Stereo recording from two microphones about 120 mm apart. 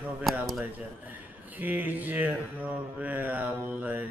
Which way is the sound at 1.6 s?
15° right (ahead or behind).